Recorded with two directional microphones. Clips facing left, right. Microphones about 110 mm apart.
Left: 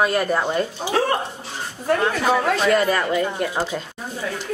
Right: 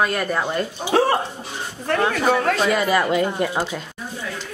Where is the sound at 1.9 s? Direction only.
5° left (ahead or behind).